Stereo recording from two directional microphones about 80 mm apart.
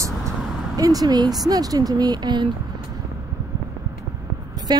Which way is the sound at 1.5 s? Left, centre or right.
Right.